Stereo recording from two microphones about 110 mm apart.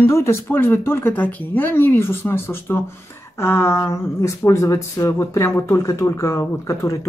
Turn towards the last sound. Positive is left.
turn(degrees=30)  # may be behind; listen again after turning